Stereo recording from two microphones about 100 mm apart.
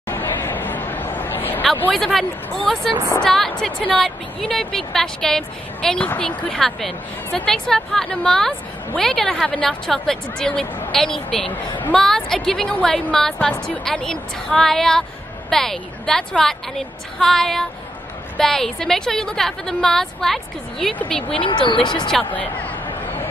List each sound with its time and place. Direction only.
0.1 s a sound: 20° left (ahead or behind)
2.0 s a woman's voice: 5° left (ahead or behind)
21.3 s speech: 60° left (ahead or behind)
22.3 s speech: 15° left (ahead or behind)